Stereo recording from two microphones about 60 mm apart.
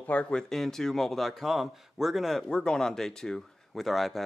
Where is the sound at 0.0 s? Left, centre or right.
Left.